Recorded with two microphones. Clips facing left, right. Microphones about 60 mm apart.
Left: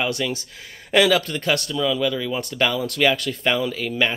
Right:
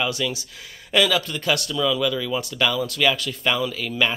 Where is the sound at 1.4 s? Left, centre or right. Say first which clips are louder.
Left 1 dB; left.